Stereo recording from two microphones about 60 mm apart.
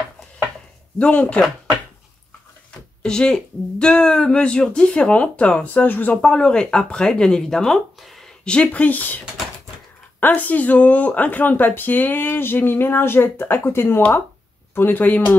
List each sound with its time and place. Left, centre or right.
0.9 s speech: left
3.0 s speech: centre; by 6.1 s left
6.2 s speech: centre
8.5 s speech: left
10.2 s speech: left